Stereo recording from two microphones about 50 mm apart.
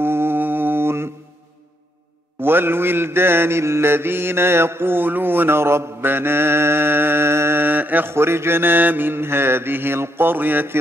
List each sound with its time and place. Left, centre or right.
0.0 s mantra: right
2.4 s mantra: right
7.6 s mantra: right
8.1 s mantra: right